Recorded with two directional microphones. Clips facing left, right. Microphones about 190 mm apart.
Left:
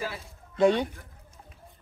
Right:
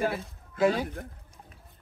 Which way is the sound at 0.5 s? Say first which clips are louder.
Left 3 dB; 5° right (ahead or behind).